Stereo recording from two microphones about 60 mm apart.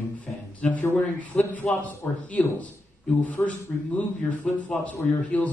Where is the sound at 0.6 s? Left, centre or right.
Left.